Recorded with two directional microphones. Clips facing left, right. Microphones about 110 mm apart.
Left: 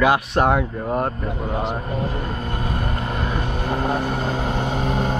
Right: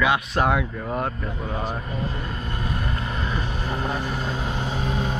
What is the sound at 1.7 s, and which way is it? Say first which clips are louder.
Vehicle: left 4 dB; 45° left (ahead or behind).